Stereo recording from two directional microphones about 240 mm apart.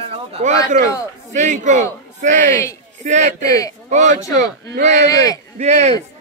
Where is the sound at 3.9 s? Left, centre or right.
Right.